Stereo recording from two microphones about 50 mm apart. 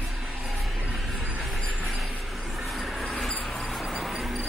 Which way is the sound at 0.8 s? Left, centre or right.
Centre.